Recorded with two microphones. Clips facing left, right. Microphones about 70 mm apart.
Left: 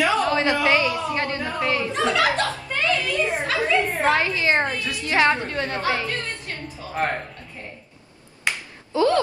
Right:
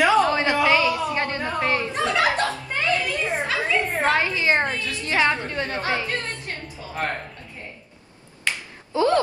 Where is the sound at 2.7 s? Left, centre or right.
Right.